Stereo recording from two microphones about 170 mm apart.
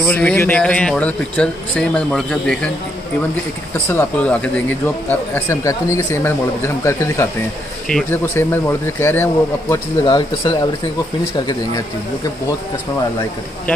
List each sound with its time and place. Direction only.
0.0 s speech: 10° left (ahead or behind)
3.7 s speech: 10° left (ahead or behind)
10.0 s speech: 30° left (ahead or behind)